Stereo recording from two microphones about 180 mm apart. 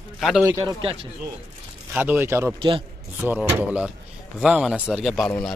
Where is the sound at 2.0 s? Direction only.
10° right (ahead or behind).